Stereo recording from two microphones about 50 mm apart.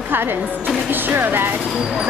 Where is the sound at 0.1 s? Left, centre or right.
Right.